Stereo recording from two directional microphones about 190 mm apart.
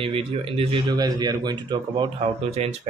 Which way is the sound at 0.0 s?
30° right (ahead or behind).